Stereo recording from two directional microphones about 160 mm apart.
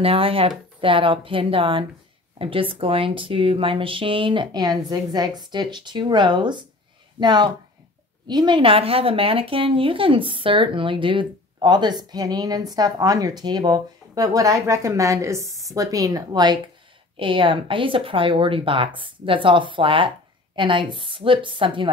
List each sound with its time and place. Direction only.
0.0 s speech: 35° right (ahead or behind)